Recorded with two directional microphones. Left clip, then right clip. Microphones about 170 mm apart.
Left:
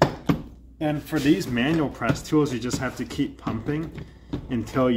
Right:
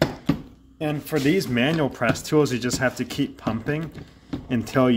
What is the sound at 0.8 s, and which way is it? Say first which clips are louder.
Speech: right 1 dB; 35° right (ahead or behind).